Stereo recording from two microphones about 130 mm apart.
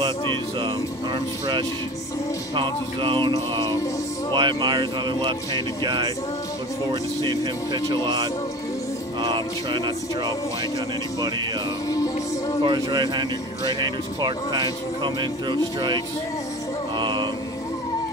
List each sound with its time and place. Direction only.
2.5 s speech: 40° right (ahead or behind)
11.9 s music: 25° left (ahead or behind)
12.6 s speech: 35° right (ahead or behind)
17.0 s mantra: 35° right (ahead or behind)